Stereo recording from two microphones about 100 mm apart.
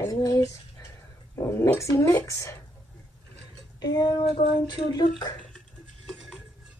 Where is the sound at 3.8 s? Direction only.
40° left (ahead or behind).